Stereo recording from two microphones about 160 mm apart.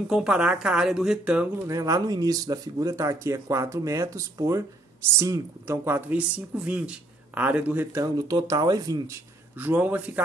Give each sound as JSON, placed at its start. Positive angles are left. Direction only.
{"t": 0.1, "sound": "speech", "side_deg": -5}
{"t": 1.7, "sound": "speech", "side_deg": -20}
{"t": 9.6, "sound": "speech", "side_deg": -10}